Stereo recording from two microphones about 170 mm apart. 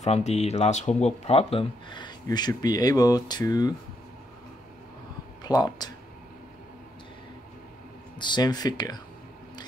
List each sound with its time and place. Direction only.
0.0 s speech: 40° left (ahead or behind); by 3.7 s 25° left (ahead or behind)
5.4 s speech: 25° left (ahead or behind)
8.2 s speech: 25° left (ahead or behind)